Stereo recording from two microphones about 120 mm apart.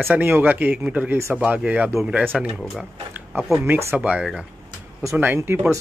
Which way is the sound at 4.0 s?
10° right (ahead or behind).